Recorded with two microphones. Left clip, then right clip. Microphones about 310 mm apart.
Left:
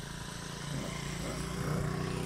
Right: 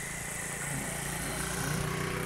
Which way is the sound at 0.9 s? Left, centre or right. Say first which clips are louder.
Right 4 dB; right.